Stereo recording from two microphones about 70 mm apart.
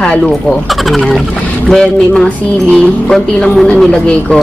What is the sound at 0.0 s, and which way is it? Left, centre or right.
Speech, centre.